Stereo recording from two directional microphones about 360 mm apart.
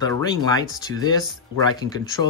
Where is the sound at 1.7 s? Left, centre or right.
Centre.